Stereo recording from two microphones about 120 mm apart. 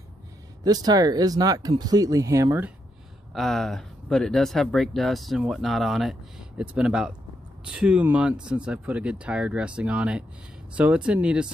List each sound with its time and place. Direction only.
0.7 s speech: 30° right (ahead or behind)
3.3 s speech: 5° left (ahead or behind)